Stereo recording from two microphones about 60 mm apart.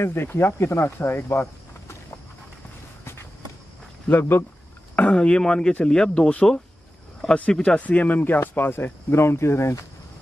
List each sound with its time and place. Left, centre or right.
0.0 s speech: left
4.1 s speech: left
4.9 s speech: centre; by 9.8 s left